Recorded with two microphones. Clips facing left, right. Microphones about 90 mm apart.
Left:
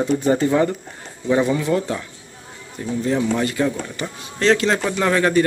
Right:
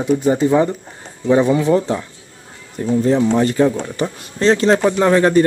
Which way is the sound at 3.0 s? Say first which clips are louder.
Right 4 dB; 30° right (ahead or behind).